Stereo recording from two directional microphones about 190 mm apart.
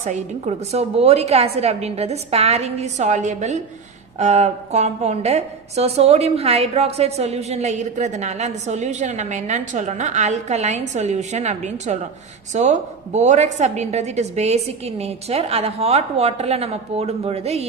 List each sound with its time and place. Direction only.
0.0 s a woman's voice: 35° right (ahead or behind)